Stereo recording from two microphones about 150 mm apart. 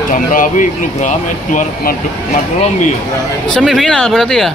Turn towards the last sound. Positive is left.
turn(degrees=5)  # may be behind; listen again after turning